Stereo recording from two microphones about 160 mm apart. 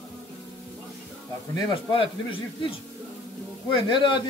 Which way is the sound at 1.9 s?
35° left (ahead or behind).